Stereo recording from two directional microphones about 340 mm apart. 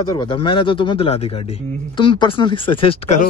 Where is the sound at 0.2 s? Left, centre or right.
Centre.